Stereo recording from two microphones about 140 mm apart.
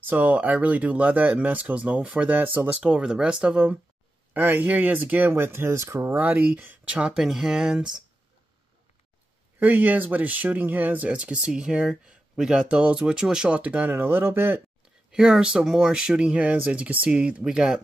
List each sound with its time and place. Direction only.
0.0 s speech: 10° right (ahead or behind)
9.6 s speech: 10° right (ahead or behind)
15.0 s speech: 5° right (ahead or behind)